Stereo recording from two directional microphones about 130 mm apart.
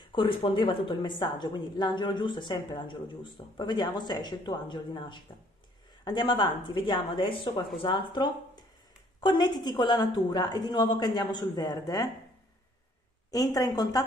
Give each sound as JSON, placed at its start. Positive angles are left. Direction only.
{"t": 0.0, "sound": "speech", "side_deg": 40}
{"t": 13.3, "sound": "a woman's voice", "side_deg": 30}